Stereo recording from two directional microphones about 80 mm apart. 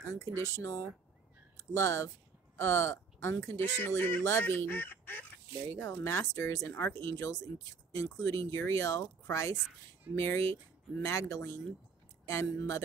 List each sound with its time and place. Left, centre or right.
0.1 s speech: left